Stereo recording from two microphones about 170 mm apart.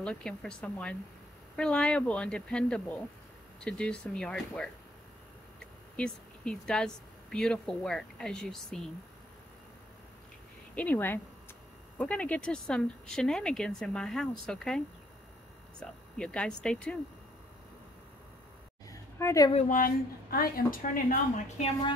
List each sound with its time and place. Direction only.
0.0 s speech: 5° left (ahead or behind)
10.7 s speech: 10° left (ahead or behind)
15.8 s speech: 5° left (ahead or behind)
18.9 s a sound: 15° left (ahead or behind)
19.7 s speech: 55° left (ahead or behind)